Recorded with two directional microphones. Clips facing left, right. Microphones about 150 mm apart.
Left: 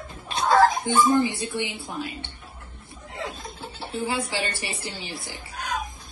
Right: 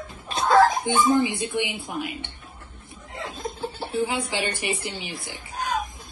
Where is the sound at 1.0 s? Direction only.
20° right (ahead or behind).